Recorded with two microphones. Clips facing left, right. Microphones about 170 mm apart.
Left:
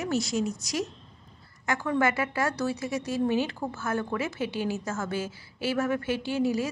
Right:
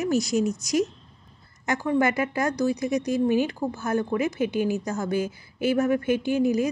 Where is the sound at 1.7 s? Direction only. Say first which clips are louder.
Right 4 dB; 35° right (ahead or behind).